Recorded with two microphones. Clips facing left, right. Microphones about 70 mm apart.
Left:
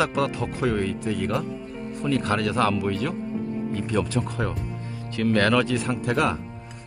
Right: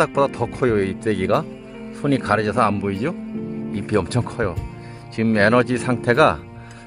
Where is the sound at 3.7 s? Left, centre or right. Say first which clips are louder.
Right 5 dB; right.